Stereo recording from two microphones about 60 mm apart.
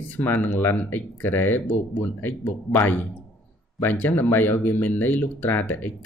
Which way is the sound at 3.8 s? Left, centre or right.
Left.